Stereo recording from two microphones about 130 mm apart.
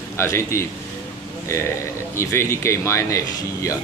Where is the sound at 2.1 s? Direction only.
20° left (ahead or behind).